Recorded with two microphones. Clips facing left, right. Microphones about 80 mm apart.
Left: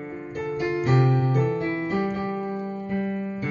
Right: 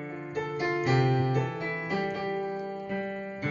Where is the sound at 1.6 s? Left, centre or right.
Left.